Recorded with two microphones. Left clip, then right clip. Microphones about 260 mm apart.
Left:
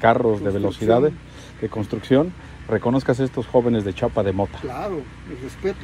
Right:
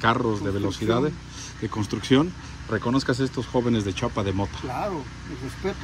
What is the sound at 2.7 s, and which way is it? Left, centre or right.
Speech, centre.